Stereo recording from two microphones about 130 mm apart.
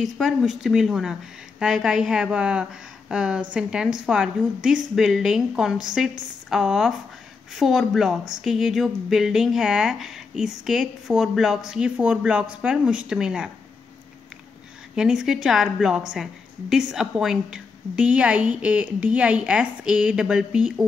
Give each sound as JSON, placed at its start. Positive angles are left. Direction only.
{"t": 0.0, "sound": "a woman's voice", "side_deg": 0}
{"t": 15.0, "sound": "a woman's voice", "side_deg": -5}